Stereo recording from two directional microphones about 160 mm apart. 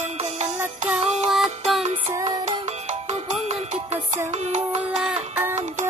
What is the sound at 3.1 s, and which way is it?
Music, 45° right (ahead or behind).